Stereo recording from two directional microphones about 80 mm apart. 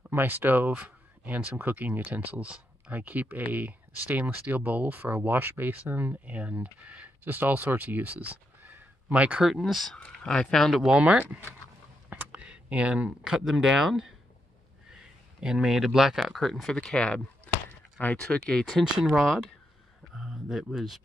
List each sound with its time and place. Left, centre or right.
0.1 s speech: right; by 10.9 s centre
10.9 s speech: centre
17.5 s a sound: centre
18.0 s speech: centre